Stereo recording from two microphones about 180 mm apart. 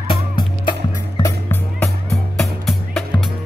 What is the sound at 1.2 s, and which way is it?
Music, 15° left (ahead or behind).